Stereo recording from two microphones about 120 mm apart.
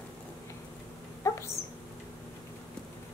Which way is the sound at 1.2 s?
25° left (ahead or behind).